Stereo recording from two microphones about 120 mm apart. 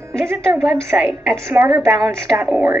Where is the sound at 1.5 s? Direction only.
15° right (ahead or behind).